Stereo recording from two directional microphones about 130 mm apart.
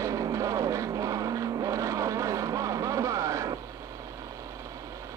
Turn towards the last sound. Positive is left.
turn(degrees=-25)  # may be behind; listen again after turning